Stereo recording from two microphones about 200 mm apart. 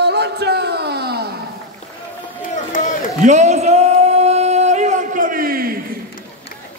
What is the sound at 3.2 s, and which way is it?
Singing, 35° right (ahead or behind).